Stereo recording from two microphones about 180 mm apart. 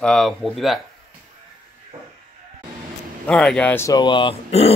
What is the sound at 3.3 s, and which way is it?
Speech, 5° left (ahead or behind).